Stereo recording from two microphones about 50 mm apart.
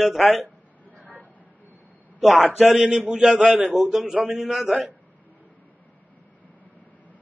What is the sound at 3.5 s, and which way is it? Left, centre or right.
A man's voice, centre.